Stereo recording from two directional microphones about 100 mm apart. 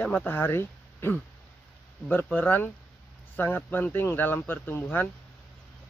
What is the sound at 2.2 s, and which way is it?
Speech, 20° left (ahead or behind).